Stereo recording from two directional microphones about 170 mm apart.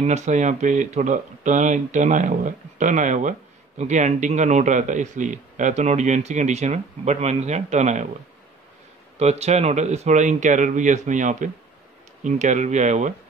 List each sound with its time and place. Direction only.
0.0 s speech: 45° right (ahead or behind)
9.2 s speech: 40° right (ahead or behind)